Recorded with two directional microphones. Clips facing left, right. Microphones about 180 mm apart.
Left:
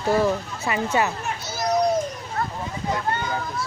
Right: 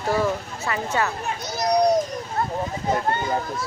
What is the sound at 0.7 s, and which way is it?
Speech, 15° left (ahead or behind).